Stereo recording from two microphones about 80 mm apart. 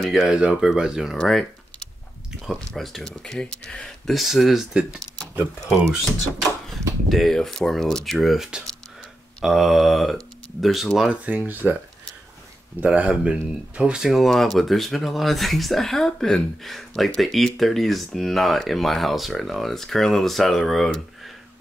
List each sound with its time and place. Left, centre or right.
0.0 s speech: centre
0.3 s speech: centre
1.2 s typing: centre
2.7 s speech: centre
7.1 s speech: centre
11.2 s speech: centre
12.8 s speech: centre